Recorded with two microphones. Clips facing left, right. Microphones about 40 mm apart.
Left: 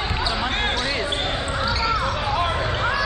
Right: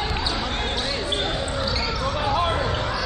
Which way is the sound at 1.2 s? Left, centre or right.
Centre.